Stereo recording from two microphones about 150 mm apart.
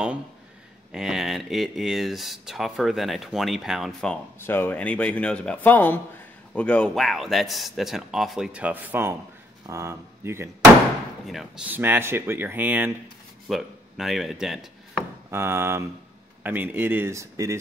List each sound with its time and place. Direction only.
0.9 s speech: 5° right (ahead or behind)
4.4 s speech: 15° left (ahead or behind); by 10.5 s 15° right (ahead or behind)
11.2 s speech: centre (ahead or behind)
11.7 s speech: 15° right (ahead or behind)
13.5 s speech: centre (ahead or behind)
15.3 s speech: 15° right (ahead or behind)